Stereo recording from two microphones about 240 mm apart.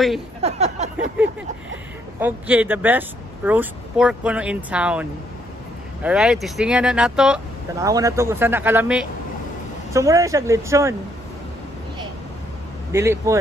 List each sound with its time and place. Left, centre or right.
0.4 s a sound: right
2.1 s speech: centre
6.0 s speech: centre
7.8 s speech: centre
12.9 s speech: centre